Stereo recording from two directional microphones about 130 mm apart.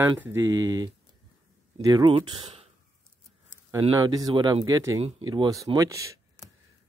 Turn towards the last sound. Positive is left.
turn(degrees=-25)  # may be behind; listen again after turning